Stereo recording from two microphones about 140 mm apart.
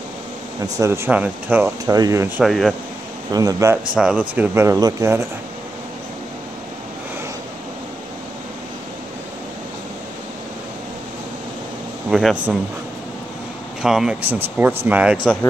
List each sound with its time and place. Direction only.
0.7 s speech: 20° right (ahead or behind)
1.9 s speech: 25° right (ahead or behind)
2.4 s speech: centre (ahead or behind)
3.3 s speech: 25° right (ahead or behind)
3.9 s speech: 5° right (ahead or behind); by 5.2 s 25° right (ahead or behind)
12.1 s speech: centre (ahead or behind)
13.8 s speech: 5° right (ahead or behind)